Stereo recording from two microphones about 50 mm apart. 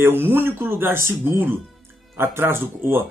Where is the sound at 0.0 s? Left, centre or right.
Right.